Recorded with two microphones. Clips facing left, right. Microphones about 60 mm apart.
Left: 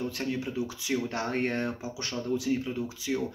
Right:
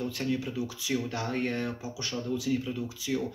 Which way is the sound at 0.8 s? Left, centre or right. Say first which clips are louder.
Left 1 dB; left.